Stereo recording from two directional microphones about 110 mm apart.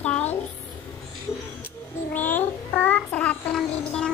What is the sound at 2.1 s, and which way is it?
Child singing, 15° left (ahead or behind).